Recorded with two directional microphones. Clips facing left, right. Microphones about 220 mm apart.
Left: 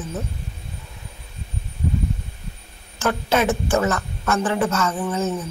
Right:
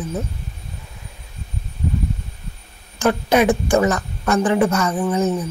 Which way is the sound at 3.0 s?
15° right (ahead or behind).